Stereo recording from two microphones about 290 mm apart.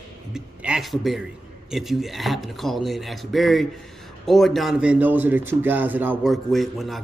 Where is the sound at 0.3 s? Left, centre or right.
Centre.